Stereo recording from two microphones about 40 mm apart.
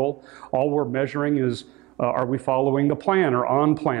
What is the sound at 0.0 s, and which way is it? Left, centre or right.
Speech, centre.